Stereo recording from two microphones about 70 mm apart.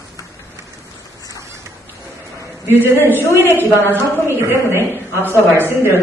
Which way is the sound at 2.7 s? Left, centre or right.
Right.